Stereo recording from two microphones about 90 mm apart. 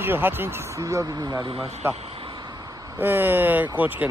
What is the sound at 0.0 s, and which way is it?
Speech, 25° right (ahead or behind).